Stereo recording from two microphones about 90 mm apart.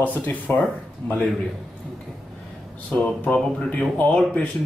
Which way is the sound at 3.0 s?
15° left (ahead or behind).